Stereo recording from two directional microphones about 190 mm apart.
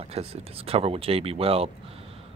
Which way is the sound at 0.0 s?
30° right (ahead or behind).